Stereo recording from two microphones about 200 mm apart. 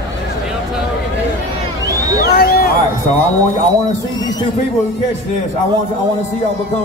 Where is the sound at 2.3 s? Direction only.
50° left (ahead or behind).